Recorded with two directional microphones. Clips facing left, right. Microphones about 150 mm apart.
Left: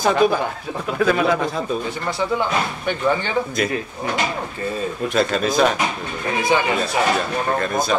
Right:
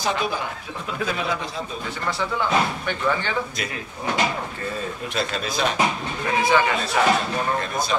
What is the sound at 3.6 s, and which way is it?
Speech, 50° left (ahead or behind).